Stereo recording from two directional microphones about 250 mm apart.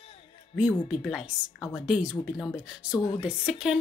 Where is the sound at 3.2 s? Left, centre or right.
Centre.